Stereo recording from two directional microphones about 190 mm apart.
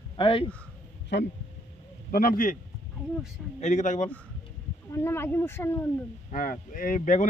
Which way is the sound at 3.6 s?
40° left (ahead or behind).